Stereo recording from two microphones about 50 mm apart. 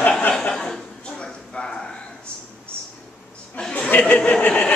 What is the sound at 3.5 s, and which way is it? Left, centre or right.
Chuckle, centre.